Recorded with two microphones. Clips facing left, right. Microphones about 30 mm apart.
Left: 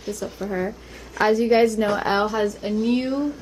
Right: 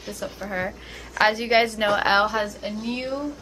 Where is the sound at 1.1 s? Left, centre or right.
Right.